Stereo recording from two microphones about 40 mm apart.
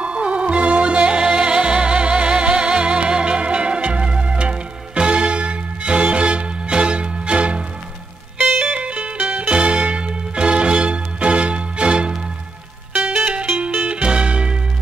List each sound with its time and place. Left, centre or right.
0.0 s music: right
8.7 s music: right
9.2 s music: right
9.5 s music: right
14.0 s music: right